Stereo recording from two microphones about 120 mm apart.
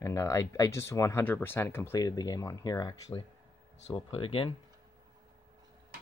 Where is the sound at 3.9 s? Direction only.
50° left (ahead or behind).